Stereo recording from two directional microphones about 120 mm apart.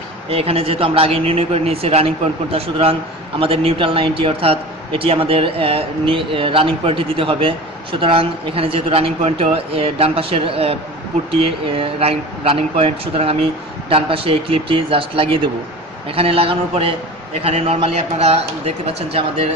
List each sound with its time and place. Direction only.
0.3 s a man's voice: 55° right (ahead or behind)